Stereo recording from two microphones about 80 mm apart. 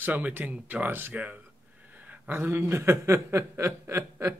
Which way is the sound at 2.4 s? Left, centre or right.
Right.